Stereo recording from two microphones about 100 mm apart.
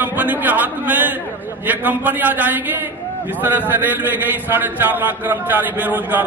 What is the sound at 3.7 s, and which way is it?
A man's voice, 20° right (ahead or behind).